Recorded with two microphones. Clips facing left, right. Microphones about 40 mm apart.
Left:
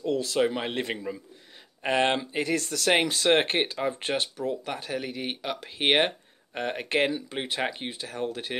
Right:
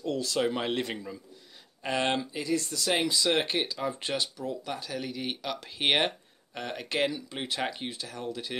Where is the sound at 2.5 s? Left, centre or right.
Left.